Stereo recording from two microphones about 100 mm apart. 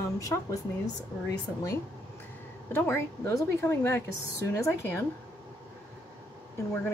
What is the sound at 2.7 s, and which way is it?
A woman's voice, 25° left (ahead or behind).